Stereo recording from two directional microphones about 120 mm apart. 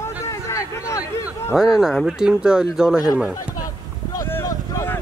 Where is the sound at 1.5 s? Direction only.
5° right (ahead or behind).